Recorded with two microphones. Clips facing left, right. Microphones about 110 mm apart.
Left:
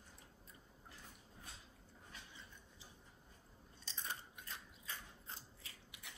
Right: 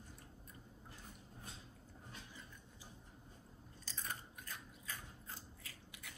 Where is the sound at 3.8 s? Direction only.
25° left (ahead or behind).